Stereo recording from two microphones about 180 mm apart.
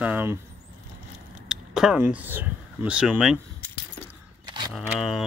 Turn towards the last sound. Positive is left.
turn(degrees=0)  # may be behind; listen again after turning